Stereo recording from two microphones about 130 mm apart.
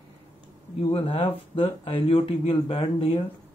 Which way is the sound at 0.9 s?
45° left (ahead or behind).